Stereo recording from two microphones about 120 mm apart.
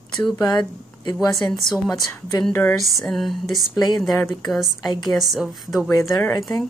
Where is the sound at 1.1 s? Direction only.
30° left (ahead or behind).